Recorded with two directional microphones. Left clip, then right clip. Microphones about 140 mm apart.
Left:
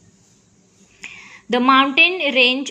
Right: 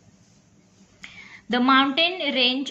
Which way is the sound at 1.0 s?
20° left (ahead or behind).